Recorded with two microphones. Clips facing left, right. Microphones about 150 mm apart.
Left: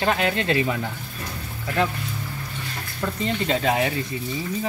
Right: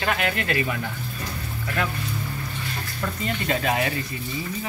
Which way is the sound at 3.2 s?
25° left (ahead or behind).